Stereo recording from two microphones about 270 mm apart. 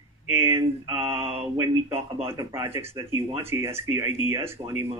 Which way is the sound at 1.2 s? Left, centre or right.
Right.